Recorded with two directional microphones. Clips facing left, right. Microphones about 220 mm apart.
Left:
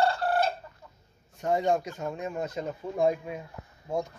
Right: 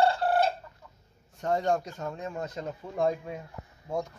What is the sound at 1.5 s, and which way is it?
Speech, 10° left (ahead or behind).